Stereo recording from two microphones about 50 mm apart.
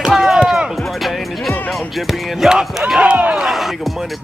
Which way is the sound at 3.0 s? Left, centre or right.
Right.